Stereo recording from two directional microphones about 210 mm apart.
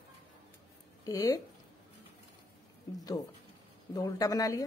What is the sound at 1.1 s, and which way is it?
Speech, 15° left (ahead or behind).